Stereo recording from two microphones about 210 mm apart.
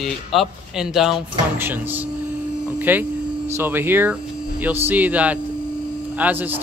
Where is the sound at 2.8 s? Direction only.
10° right (ahead or behind).